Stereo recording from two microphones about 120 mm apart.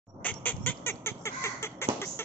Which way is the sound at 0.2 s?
15° left (ahead or behind).